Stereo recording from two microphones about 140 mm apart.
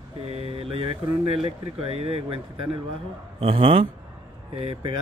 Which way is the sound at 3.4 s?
40° right (ahead or behind).